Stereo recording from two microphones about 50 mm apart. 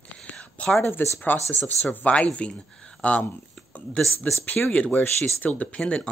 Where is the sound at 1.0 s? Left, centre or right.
Left.